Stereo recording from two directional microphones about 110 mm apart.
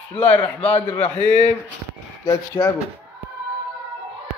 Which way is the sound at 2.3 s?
30° left (ahead or behind).